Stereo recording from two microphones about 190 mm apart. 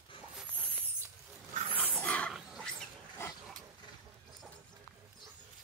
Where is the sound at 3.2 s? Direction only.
15° left (ahead or behind).